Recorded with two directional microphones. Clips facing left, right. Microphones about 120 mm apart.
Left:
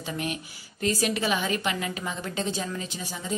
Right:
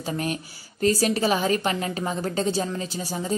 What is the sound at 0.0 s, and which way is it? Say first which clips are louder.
A woman's voice: right 4 dB; 40° right (ahead or behind).